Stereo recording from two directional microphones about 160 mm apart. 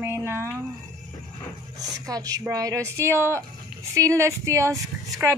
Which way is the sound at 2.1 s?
20° right (ahead or behind).